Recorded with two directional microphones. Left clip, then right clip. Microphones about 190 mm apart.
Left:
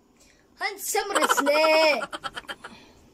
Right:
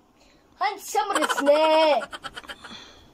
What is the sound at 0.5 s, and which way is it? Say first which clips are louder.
Speech: right 3 dB; 20° left (ahead or behind).